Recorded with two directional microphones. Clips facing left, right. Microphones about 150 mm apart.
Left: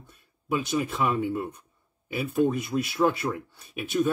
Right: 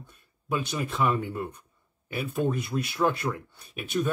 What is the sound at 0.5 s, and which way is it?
Speech, 5° left (ahead or behind).